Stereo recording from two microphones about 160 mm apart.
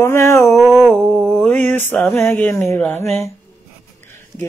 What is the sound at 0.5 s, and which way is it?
Mantra, centre (ahead or behind).